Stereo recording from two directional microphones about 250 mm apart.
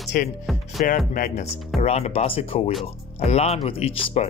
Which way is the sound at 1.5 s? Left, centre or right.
Centre.